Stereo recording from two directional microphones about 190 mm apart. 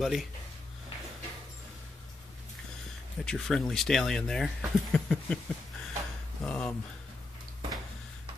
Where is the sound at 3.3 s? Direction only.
Centre (ahead or behind).